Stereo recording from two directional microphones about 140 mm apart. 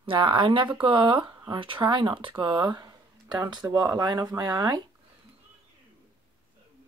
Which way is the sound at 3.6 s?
5° right (ahead or behind).